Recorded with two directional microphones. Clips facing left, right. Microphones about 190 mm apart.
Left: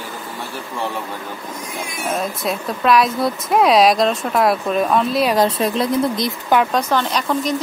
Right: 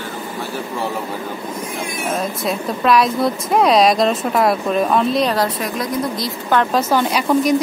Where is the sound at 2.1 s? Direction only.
Centre (ahead or behind).